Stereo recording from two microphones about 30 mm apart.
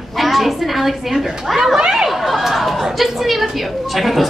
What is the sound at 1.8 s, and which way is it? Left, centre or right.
Speech, right.